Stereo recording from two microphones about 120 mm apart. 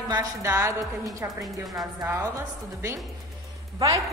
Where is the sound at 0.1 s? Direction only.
25° right (ahead or behind).